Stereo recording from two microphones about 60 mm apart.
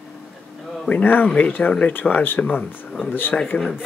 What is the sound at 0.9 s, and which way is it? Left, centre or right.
Speech, left.